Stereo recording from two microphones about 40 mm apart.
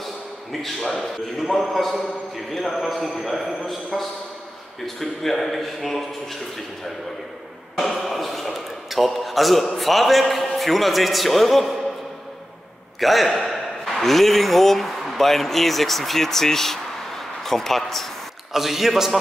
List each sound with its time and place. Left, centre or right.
0.0 s a sound: centre
0.7 s a man's voice: centre
1.0 s a man's voice: centre
8.0 s a sound: centre
9.8 s a man's voice: centre
13.0 s a man's voice: centre
18.5 s a man's voice: centre